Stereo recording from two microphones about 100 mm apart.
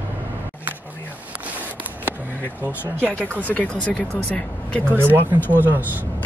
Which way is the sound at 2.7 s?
20° left (ahead or behind).